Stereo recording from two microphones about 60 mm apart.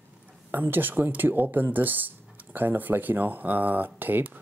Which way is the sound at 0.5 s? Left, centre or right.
Right.